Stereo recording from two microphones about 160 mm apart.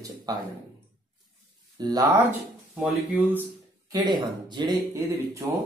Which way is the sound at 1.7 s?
25° right (ahead or behind).